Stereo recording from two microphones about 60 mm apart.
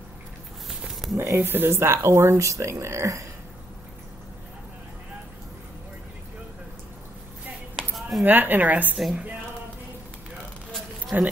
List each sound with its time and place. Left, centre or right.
0.7 s a sound: centre
1.1 s speech: right
7.9 s a sound: centre
8.3 s a woman's voice: right
8.9 s a woman's voice: centre
11.1 s speech: right